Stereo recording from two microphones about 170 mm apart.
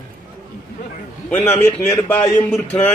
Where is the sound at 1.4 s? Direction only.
10° left (ahead or behind).